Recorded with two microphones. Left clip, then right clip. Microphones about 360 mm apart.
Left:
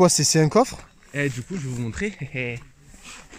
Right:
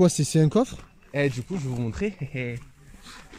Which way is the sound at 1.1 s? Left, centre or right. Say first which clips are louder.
Right 1 dB; centre.